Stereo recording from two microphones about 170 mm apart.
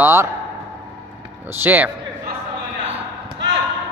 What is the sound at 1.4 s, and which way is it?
Speech, 10° right (ahead or behind).